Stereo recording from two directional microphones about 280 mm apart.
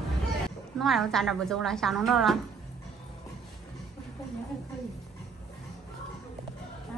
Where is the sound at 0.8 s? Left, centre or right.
Centre.